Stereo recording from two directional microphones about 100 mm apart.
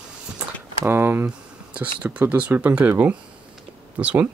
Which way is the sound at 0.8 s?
20° right (ahead or behind).